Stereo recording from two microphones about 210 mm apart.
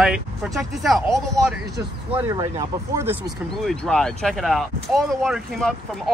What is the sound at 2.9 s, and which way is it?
Speech, 10° right (ahead or behind).